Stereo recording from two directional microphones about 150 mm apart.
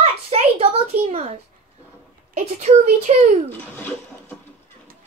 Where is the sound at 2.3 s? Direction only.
50° right (ahead or behind).